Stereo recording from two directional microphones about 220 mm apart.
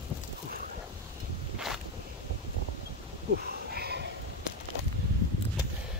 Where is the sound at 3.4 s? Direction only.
45° right (ahead or behind).